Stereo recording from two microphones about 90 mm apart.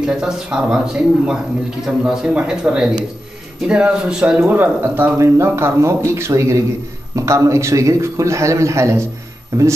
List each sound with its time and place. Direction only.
0.0 s speech: 10° right (ahead or behind)
4.6 s speech: 25° right (ahead or behind)